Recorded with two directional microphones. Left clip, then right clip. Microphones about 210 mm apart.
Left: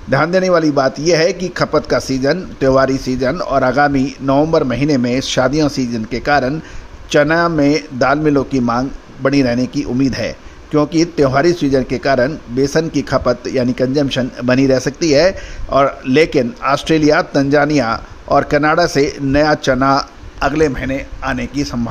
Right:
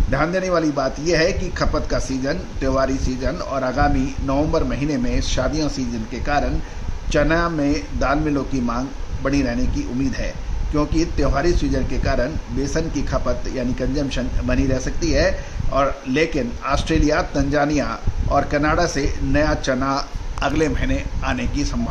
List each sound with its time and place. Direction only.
0.1 s speech: 40° left (ahead or behind)